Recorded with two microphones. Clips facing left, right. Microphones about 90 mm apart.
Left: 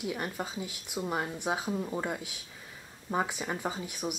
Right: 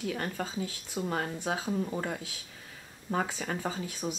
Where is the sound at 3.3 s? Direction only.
20° left (ahead or behind).